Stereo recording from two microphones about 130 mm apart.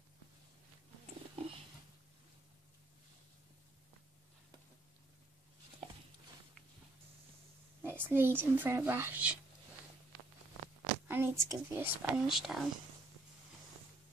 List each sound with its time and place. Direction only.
7.8 s speech: 15° right (ahead or behind)
11.1 s speech: 15° right (ahead or behind)
12.3 s speech: centre (ahead or behind)